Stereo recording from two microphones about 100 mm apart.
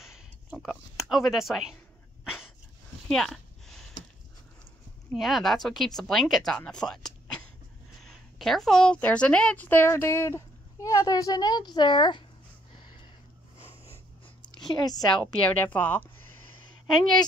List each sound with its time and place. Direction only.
0.0 s a sound: 5° right (ahead or behind)
0.7 s speech: centre (ahead or behind)
3.1 s a sound: 5° left (ahead or behind)
5.1 s a woman's voice: centre (ahead or behind); by 12.3 s 50° left (ahead or behind)
14.6 s a woman's voice: 45° left (ahead or behind)
15.6 s speech: 15° left (ahead or behind)